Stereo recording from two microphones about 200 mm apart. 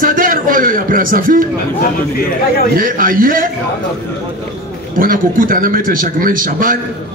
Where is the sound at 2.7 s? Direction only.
45° right (ahead or behind).